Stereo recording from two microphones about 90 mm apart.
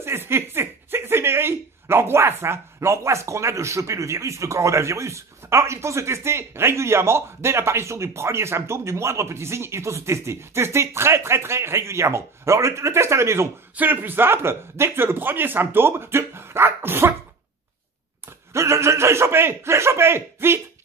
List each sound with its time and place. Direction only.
0.0 s a man's voice: 25° right (ahead or behind)
18.5 s a man's voice: 30° right (ahead or behind)